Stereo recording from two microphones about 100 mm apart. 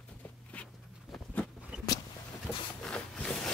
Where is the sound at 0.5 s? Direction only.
15° left (ahead or behind).